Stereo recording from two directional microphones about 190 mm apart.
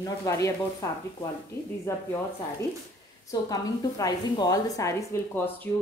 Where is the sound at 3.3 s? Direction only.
20° left (ahead or behind).